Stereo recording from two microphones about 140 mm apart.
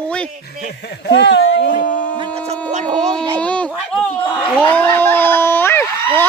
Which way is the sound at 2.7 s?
60° right (ahead or behind).